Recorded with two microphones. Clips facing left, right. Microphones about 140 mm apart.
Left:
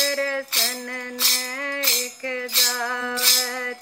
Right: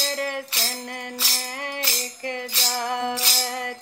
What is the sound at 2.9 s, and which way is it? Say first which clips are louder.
Music: right 2 dB; 15° right (ahead or behind).